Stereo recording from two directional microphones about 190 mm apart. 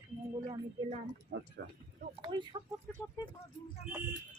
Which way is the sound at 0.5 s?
40° right (ahead or behind).